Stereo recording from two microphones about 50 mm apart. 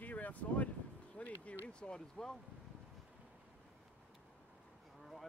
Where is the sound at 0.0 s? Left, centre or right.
Left.